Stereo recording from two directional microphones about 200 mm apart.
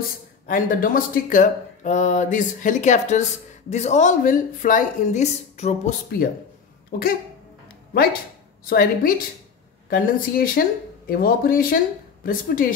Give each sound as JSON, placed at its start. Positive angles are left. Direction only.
{"t": 0.5, "sound": "speech", "side_deg": 45}
{"t": 6.0, "sound": "speech", "side_deg": 50}
{"t": 8.6, "sound": "speech", "side_deg": 50}